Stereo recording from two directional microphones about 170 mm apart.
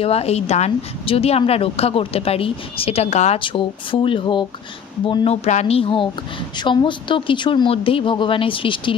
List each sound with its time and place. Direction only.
0.0 s a woman's voice: 35° left (ahead or behind)
3.3 s a woman's voice: 30° left (ahead or behind)